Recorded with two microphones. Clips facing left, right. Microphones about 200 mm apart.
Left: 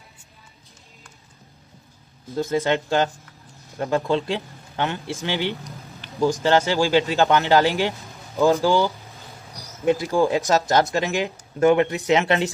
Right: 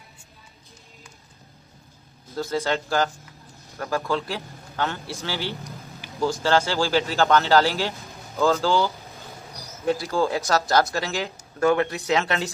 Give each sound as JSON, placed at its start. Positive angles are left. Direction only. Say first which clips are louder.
{"t": 2.3, "sound": "a man's voice", "louder": "left 4 dB", "side_deg": 20}
{"t": 7.9, "sound": "music", "louder": "left 1 dB", "side_deg": 0}
{"t": 8.4, "sound": "speech", "louder": "left 3 dB", "side_deg": 15}
{"t": 9.1, "sound": "mouse", "louder": "right 1 dB", "side_deg": 0}
{"t": 9.8, "sound": "speech", "louder": "left 4 dB", "side_deg": 15}